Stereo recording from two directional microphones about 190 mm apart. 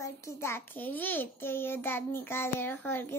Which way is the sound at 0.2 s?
15° left (ahead or behind).